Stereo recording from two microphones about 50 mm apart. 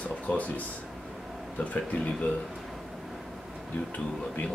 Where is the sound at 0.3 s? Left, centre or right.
Left.